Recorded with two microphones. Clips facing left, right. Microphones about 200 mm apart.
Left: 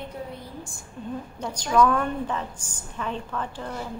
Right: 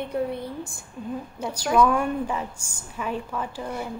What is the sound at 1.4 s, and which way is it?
A woman's voice, 5° right (ahead or behind).